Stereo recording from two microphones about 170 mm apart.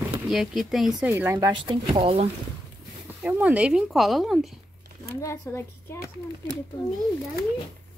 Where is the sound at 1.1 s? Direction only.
15° right (ahead or behind); by 2.3 s 35° right (ahead or behind).